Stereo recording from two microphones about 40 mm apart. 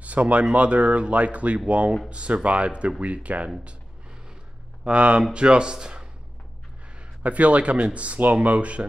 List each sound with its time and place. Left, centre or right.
0.0 s speech: right
4.8 s speech: right
7.2 s speech: right